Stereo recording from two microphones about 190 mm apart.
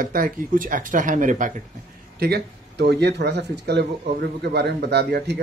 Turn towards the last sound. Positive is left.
turn(degrees=-60)  # may be behind; listen again after turning